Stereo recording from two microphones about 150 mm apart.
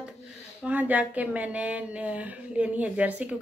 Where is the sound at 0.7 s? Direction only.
10° right (ahead or behind).